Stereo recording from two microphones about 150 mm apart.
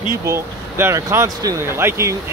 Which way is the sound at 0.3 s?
15° right (ahead or behind).